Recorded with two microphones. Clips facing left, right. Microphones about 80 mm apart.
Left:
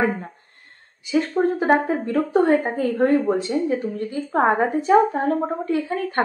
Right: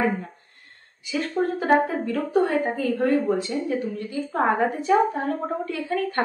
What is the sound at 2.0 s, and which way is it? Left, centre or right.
Speech, left.